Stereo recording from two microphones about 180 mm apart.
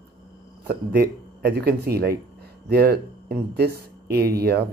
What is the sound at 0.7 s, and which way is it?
Speech, 60° right (ahead or behind).